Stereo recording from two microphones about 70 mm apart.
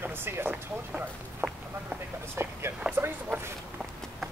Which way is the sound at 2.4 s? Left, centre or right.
Right.